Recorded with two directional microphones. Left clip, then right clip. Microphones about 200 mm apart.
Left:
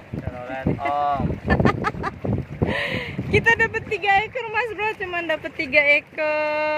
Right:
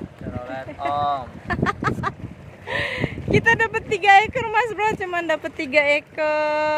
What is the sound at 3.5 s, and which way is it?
Speech, 10° right (ahead or behind).